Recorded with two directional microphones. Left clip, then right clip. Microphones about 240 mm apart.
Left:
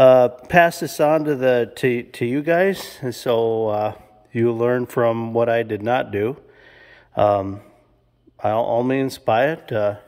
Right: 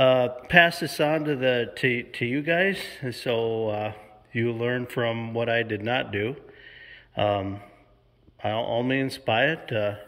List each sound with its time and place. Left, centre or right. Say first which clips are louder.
0.0 s a man's voice: left 8 dB; centre